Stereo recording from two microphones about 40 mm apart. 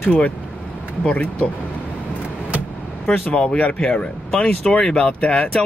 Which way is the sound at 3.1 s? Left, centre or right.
Left.